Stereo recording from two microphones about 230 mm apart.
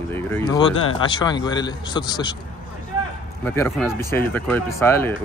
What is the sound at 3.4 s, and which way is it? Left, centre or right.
Speech, centre.